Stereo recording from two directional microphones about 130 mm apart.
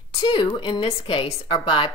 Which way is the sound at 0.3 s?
40° left (ahead or behind).